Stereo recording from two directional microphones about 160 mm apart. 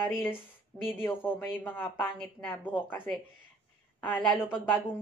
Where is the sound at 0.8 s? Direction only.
15° left (ahead or behind).